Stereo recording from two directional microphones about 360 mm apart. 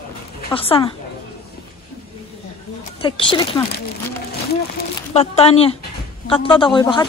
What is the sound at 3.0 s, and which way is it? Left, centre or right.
Speech, centre.